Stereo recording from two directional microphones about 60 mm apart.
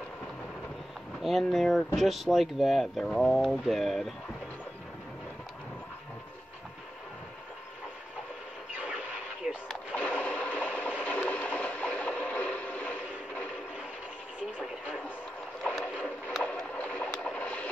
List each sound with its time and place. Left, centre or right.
1.2 s speech: centre
8.7 s radio: centre
9.9 s train: left
15.6 s boat: centre
16.7 s vehicle: left